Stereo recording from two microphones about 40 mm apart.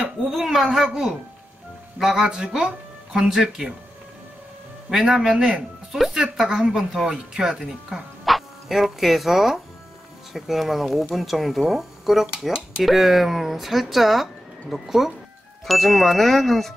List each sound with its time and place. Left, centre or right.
0.4 s speech: centre
4.8 s speech: centre
5.3 s speech: right
5.9 s speech: centre